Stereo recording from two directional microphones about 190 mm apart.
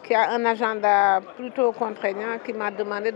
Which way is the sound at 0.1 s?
15° left (ahead or behind).